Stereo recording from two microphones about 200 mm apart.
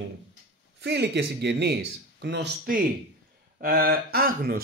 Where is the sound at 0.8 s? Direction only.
60° right (ahead or behind).